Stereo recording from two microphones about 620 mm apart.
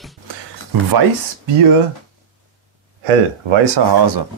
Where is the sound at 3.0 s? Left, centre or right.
Right.